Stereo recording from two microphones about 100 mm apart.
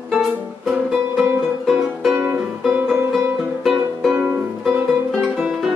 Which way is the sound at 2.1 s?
15° right (ahead or behind).